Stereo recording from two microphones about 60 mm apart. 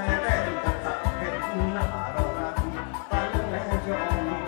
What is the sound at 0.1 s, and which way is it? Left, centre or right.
Music, centre.